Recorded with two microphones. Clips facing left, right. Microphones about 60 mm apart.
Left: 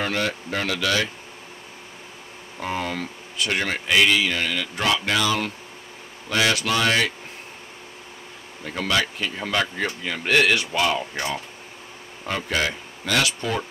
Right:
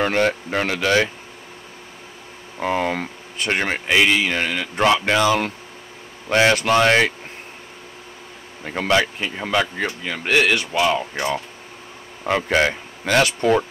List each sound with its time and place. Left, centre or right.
0.0 s speech: right
2.6 s speech: right
8.6 s speech: right; by 11.2 s centre
12.3 s speech: right